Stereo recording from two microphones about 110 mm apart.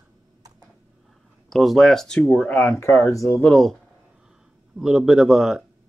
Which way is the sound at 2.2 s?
15° left (ahead or behind).